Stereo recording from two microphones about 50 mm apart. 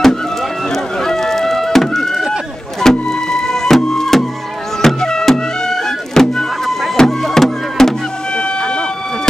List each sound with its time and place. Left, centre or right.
0.0 s music: centre
8.4 s vehicle: centre